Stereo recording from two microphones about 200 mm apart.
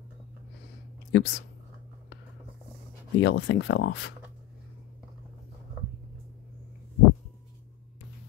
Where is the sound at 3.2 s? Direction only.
65° left (ahead or behind).